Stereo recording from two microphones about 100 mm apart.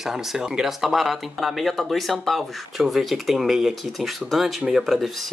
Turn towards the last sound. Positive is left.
turn(degrees=0)  # may be behind; listen again after turning